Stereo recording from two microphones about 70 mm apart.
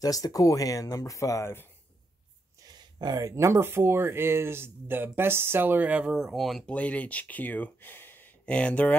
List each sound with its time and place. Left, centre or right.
0.0 s speech: left
2.7 s a sound: right
3.3 s speech: right; by 6.2 s centre
6.2 s speech: centre
6.6 s speech: centre
8.5 s speech: centre